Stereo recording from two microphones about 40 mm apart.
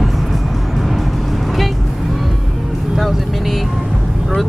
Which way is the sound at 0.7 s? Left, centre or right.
Centre.